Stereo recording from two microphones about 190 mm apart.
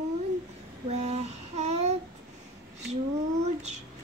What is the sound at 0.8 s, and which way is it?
Child singing, 35° right (ahead or behind).